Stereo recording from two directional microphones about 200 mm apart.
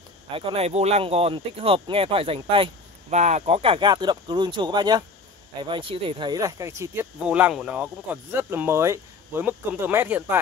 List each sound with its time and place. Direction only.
0.3 s speech: 30° right (ahead or behind); by 10.4 s 10° right (ahead or behind)